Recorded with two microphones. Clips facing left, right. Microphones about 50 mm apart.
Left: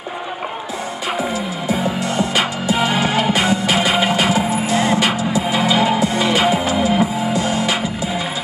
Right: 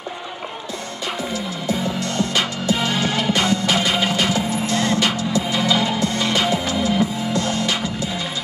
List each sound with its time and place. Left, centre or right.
1.7 s music: centre